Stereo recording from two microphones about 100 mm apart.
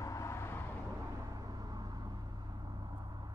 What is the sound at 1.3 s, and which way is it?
Vehicle, 40° right (ahead or behind).